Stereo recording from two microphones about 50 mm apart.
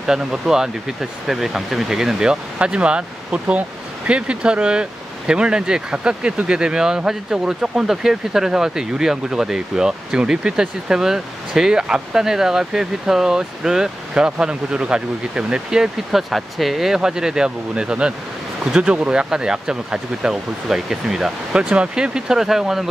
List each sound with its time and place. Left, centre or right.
0.0 s speech: centre
21.6 s speech: centre